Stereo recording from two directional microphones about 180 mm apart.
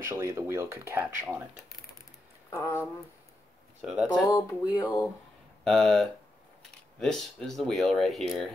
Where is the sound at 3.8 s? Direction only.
5° right (ahead or behind).